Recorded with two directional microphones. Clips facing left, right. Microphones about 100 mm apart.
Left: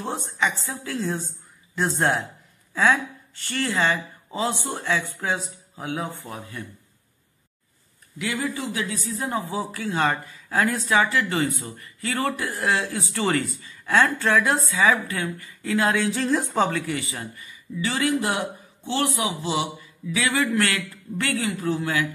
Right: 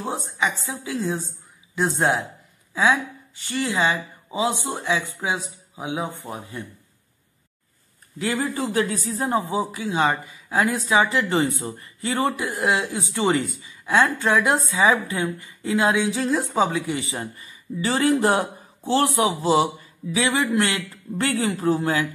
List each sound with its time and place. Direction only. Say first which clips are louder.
0.0 s speech: right 1 dB; 10° right (ahead or behind)
8.2 s a man's voice: right 3 dB; 35° right (ahead or behind)
9.4 s speech: right 3 dB; 20° right (ahead or behind)
16.9 s speech: right 2 dB; 25° right (ahead or behind)
20.2 s a man's voice: right 2 dB; 20° right (ahead or behind)